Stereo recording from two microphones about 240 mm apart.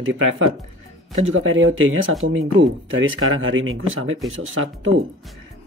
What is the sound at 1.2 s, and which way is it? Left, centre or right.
Speech, right.